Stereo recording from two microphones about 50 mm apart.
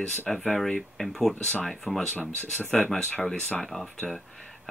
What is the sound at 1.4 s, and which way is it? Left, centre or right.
Speech, centre.